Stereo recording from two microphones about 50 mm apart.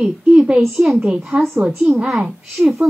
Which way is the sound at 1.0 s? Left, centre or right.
Centre.